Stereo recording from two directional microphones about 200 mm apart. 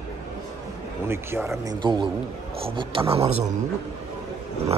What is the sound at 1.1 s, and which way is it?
A man's voice, 10° right (ahead or behind).